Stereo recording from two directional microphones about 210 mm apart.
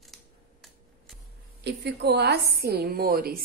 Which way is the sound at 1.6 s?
50° right (ahead or behind).